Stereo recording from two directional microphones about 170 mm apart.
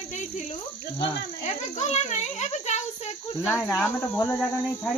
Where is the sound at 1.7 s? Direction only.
40° left (ahead or behind).